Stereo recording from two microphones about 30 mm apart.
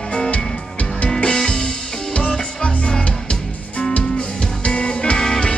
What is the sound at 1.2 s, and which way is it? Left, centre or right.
Music, left.